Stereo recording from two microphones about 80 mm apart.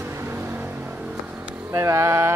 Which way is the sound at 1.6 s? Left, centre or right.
Right.